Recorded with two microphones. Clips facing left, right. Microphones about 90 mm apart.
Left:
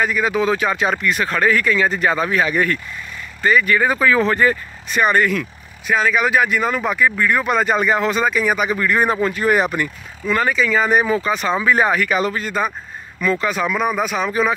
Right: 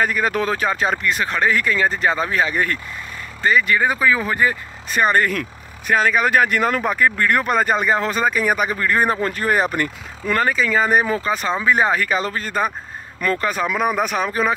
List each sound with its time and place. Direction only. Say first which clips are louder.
0.0 s speech: left 1 dB; 45° right (ahead or behind); by 4.6 s 15° right (ahead or behind)
4.9 s speech: left 1 dB; 35° right (ahead or behind); by 6.8 s 55° right (ahead or behind)
6.8 s speech: even; 40° right (ahead or behind)
7.2 s speech: even; 60° right (ahead or behind)
7.4 s speech: left 1 dB; 40° right (ahead or behind)
7.7 s speech: left 2 dB; 30° right (ahead or behind)
9.8 s speech: even; 50° right (ahead or behind); by 12.3 s 30° right (ahead or behind)
12.4 s speech: even; 40° right (ahead or behind)